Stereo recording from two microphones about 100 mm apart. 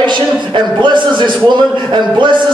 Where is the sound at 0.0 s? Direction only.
50° right (ahead or behind).